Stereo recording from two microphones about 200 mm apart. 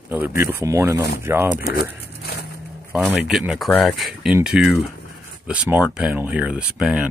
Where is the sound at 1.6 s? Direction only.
50° left (ahead or behind).